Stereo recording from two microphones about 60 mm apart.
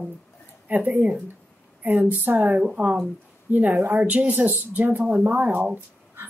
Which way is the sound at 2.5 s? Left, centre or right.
Centre.